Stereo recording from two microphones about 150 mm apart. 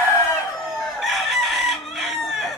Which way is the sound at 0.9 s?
Centre (ahead or behind).